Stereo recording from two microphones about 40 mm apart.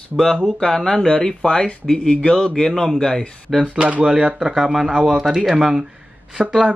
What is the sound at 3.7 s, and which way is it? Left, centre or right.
Speech, right.